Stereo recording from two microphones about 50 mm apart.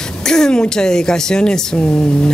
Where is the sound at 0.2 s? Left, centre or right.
Centre.